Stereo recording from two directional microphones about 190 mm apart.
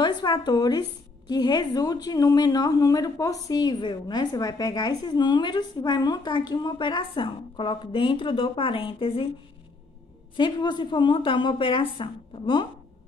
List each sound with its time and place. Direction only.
0.0 s a woman's voice: 25° left (ahead or behind)
10.3 s a woman's voice: 25° left (ahead or behind)